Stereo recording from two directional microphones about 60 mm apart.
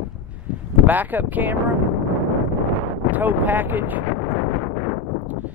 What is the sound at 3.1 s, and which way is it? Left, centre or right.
Speech, right.